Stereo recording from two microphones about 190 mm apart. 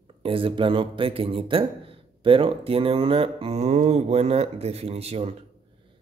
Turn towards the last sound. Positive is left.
turn(degrees=-30)  # may be behind; listen again after turning